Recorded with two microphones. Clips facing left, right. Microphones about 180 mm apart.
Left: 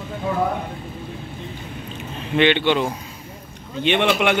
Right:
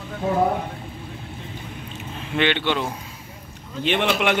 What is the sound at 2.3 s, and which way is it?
A man's voice, centre (ahead or behind).